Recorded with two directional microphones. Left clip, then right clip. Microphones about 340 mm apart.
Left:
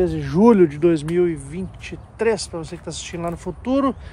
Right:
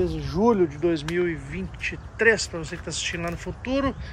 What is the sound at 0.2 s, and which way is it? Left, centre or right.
Speech, left.